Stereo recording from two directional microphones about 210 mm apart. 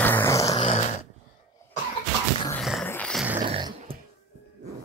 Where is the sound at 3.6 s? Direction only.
20° right (ahead or behind).